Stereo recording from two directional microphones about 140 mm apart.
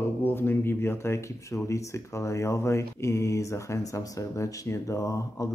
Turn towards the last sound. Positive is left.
turn(degrees=20)  # may be behind; listen again after turning